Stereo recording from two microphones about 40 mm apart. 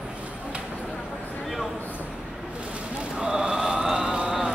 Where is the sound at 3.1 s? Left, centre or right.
Right.